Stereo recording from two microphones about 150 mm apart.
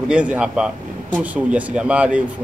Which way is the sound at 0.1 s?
10° right (ahead or behind).